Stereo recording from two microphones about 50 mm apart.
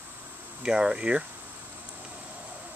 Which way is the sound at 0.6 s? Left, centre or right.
Centre.